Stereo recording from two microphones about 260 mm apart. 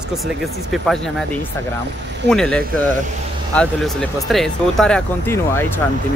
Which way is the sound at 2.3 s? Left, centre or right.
Centre.